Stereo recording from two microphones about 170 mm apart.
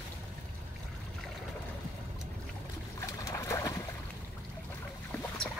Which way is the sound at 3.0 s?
15° left (ahead or behind).